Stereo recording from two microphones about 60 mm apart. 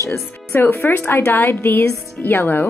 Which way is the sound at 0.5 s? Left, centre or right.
Left.